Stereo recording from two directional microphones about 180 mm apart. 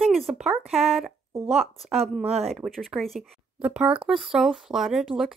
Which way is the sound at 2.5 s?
Centre (ahead or behind).